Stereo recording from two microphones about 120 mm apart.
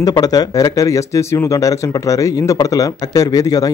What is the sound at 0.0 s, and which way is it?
Speech, 30° left (ahead or behind).